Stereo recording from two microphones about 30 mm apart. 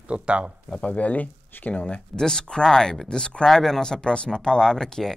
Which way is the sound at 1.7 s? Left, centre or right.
Left.